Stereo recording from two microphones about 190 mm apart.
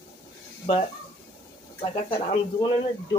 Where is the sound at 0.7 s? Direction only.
30° left (ahead or behind).